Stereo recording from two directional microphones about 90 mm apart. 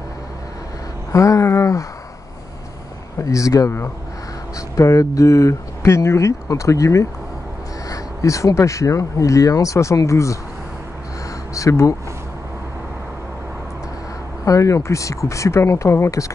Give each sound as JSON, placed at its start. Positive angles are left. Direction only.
{"t": 1.1, "sound": "speech", "side_deg": 35}
{"t": 3.3, "sound": "speech", "side_deg": 40}
{"t": 11.5, "sound": "speech", "side_deg": 35}
{"t": 14.4, "sound": "speech", "side_deg": 40}